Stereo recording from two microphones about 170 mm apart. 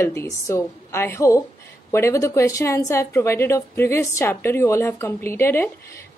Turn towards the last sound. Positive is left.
turn(degrees=15)  # may be behind; listen again after turning